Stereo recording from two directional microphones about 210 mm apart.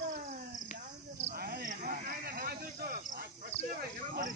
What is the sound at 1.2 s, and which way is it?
Speech, 45° right (ahead or behind).